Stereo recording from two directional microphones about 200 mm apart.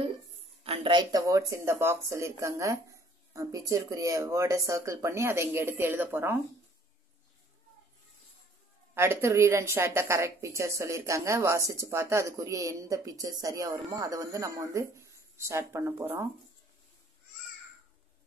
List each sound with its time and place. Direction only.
0.7 s a woman's voice: 25° right (ahead or behind)
8.9 s a woman's voice: 10° right (ahead or behind)